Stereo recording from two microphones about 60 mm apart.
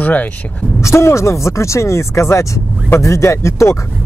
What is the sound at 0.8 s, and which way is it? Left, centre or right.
Speech, left.